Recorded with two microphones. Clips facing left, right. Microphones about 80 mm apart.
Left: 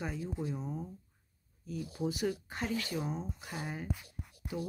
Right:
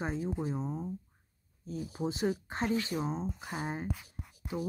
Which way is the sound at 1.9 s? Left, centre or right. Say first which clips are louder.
Right 2 dB; right.